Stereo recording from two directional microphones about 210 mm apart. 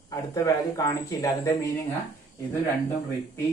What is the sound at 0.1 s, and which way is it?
Speech, 15° left (ahead or behind).